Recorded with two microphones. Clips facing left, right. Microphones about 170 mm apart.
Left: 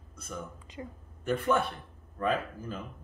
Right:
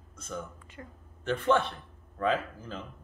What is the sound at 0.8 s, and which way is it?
A man's voice, 15° left (ahead or behind).